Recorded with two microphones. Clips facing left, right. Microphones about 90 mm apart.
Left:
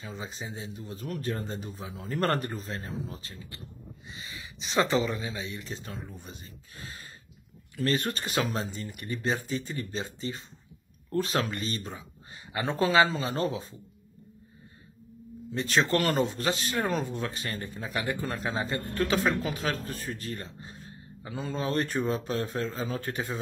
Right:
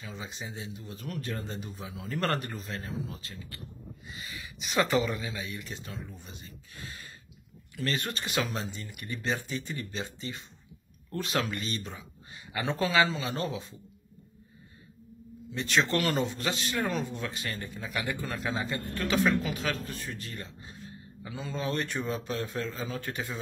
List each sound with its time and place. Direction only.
0.0 s a man's voice: 35° left (ahead or behind)
6.8 s a sound: 35° left (ahead or behind)
7.7 s a man's voice: 35° left (ahead or behind)
15.5 s a man's voice: 40° left (ahead or behind)